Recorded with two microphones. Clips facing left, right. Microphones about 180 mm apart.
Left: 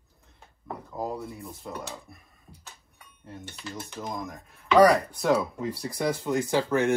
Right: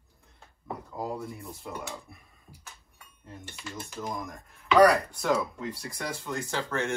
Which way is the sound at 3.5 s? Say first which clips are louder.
Left 1 dB; centre (ahead or behind).